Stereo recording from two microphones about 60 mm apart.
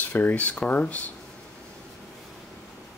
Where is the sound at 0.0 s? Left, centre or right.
Left.